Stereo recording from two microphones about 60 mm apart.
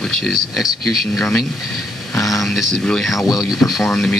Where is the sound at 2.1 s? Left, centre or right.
Left.